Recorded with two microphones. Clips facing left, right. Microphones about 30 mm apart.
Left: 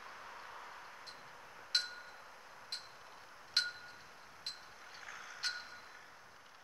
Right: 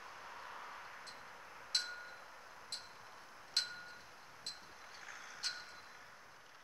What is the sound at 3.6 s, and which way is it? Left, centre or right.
Wind chime, left.